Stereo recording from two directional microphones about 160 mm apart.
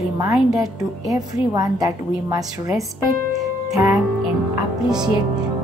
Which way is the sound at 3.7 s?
Centre (ahead or behind).